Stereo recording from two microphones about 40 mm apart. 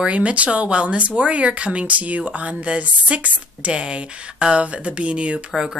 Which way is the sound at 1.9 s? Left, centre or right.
Right.